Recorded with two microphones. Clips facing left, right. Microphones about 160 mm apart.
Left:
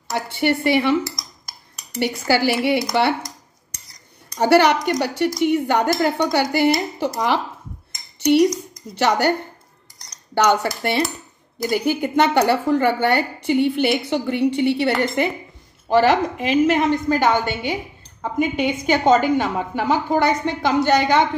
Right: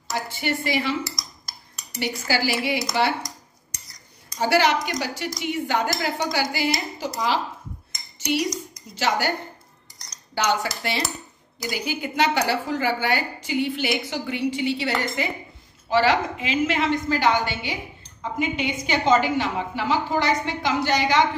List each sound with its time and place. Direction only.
0.1 s a woman's voice: 60° left (ahead or behind)
2.0 s a woman's voice: 60° left (ahead or behind)
4.4 s a woman's voice: 60° left (ahead or behind)
8.2 s cutlery: 60° left (ahead or behind)
8.9 s a woman's voice: 60° left (ahead or behind)
10.3 s a woman's voice: 60° left (ahead or behind)
15.9 s a woman's voice: 50° left (ahead or behind)